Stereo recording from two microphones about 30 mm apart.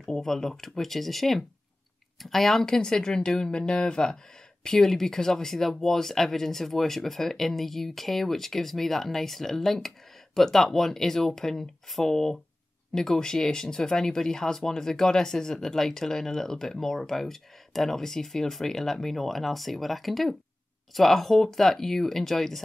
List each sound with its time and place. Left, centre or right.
0.0 s speech: centre
2.6 s a woman's voice: centre
4.6 s speech: centre